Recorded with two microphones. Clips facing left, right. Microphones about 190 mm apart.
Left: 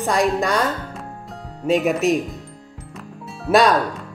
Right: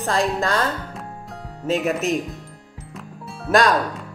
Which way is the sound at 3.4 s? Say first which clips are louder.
Left 2 dB; centre (ahead or behind).